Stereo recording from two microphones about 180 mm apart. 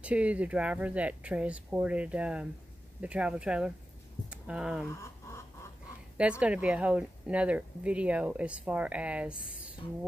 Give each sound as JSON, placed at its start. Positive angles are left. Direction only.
{"t": 0.0, "sound": "speech", "side_deg": -5}
{"t": 4.8, "sound": "a sound", "side_deg": 15}
{"t": 6.4, "sound": "speech", "side_deg": -5}